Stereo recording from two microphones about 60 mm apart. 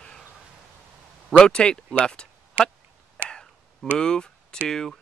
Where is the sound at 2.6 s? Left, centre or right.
Right.